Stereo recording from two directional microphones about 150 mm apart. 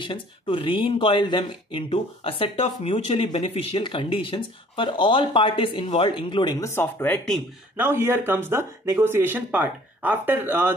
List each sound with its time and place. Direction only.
0.0 s speech: 35° left (ahead or behind); by 7.2 s 15° left (ahead or behind)
7.7 s speech: 15° right (ahead or behind)